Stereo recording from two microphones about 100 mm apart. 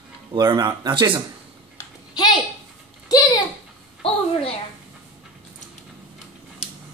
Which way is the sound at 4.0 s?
70° left (ahead or behind).